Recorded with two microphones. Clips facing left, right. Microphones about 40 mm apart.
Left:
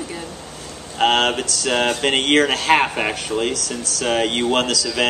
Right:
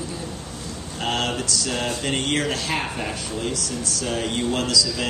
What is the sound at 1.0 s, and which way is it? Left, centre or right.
Speech, left.